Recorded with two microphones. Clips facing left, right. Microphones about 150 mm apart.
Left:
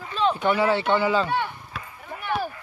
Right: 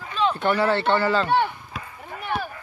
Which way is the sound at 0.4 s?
5° left (ahead or behind).